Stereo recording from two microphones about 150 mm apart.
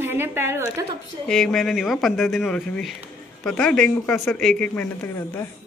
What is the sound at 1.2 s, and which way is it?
Speech, 5° left (ahead or behind).